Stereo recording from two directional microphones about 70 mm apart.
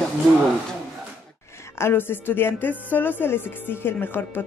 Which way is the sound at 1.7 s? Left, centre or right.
Left.